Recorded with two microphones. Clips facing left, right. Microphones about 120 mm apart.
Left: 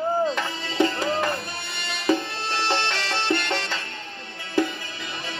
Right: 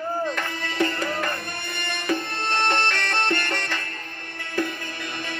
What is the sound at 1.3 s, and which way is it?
Tabla, 50° right (ahead or behind).